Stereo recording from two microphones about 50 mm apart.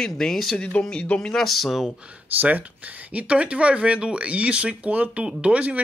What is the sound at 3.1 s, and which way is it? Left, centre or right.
Speech, right.